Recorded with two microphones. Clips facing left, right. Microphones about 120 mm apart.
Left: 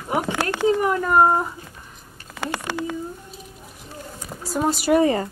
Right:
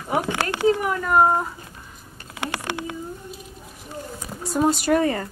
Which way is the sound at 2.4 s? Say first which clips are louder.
Left 1 dB; 60° right (ahead or behind).